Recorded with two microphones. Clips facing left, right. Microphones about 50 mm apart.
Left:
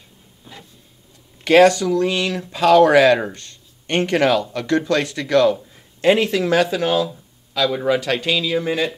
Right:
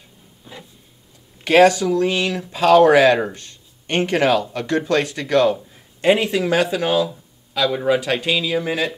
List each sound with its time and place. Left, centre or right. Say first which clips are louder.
1.4 s speech: left 1 dB; centre
3.2 s speech: right 2 dB; centre